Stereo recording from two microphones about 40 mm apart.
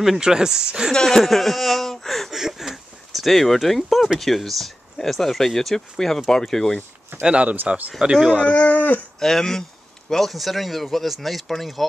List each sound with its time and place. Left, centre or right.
0.2 s speech: centre
0.9 s speech: centre
2.3 s a sound: centre
4.2 s speech: centre
7.1 s speech: right
7.6 s speech: right
8.0 s speech: centre
8.5 s speech: left
9.2 s speech: centre
10.3 s speech: centre